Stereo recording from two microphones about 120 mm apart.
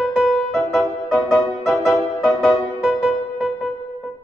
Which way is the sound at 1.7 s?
15° left (ahead or behind).